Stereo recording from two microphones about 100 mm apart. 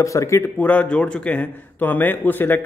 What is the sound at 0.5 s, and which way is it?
Speech, 15° left (ahead or behind).